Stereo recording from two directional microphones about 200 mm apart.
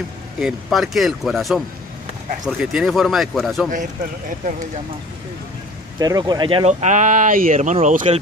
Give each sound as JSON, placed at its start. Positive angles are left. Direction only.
{"t": 0.4, "sound": "speech", "side_deg": 0}
{"t": 5.9, "sound": "speech", "side_deg": -20}